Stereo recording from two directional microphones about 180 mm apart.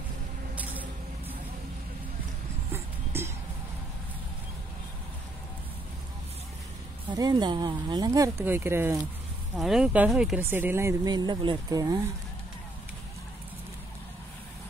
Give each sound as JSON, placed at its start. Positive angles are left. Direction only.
{"t": 0.6, "sound": "vehicle", "side_deg": -10}
{"t": 2.7, "sound": "music", "side_deg": -15}
{"t": 7.2, "sound": "speech", "side_deg": -25}
{"t": 9.6, "sound": "speech", "side_deg": -5}